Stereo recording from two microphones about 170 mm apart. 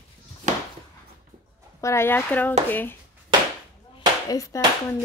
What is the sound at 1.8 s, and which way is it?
Speech, 15° left (ahead or behind).